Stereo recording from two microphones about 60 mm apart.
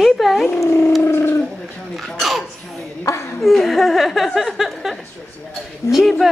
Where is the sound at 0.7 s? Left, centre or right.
Left.